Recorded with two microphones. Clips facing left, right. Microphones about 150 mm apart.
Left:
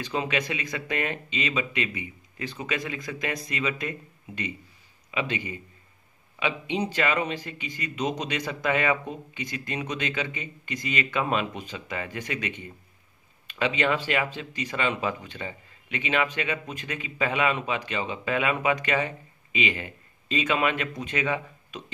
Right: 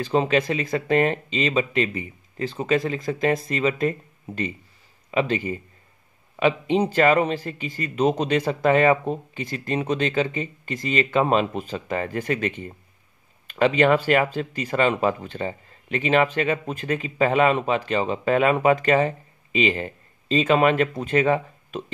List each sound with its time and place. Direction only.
0.1 s speech: 35° right (ahead or behind)
5.1 s speech: 40° right (ahead or behind)